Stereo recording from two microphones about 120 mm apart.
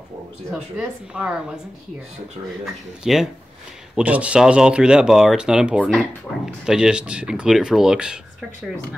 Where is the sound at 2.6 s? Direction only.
Centre (ahead or behind).